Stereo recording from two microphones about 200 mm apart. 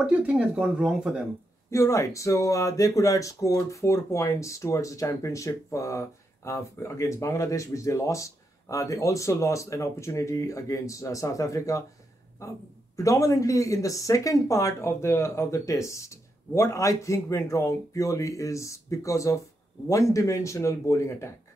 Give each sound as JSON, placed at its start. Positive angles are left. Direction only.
{"t": 0.0, "sound": "speech", "side_deg": -5}
{"t": 1.7, "sound": "speech", "side_deg": 15}
{"t": 12.9, "sound": "speech", "side_deg": 15}